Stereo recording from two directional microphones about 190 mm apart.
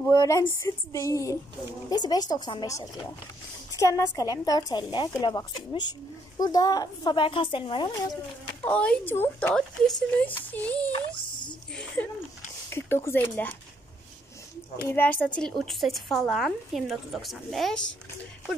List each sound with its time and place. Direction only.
0.1 s a woman's voice: 15° left (ahead or behind)
8.6 s speech: 5° left (ahead or behind)
11.1 s a sound: 25° left (ahead or behind)
12.0 s speech: 10° left (ahead or behind)
14.8 s a woman's voice: 10° left (ahead or behind)